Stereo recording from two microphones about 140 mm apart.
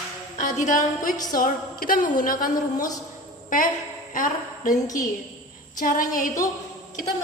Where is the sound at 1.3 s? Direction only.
90° left; by 4.8 s 70° left (ahead or behind).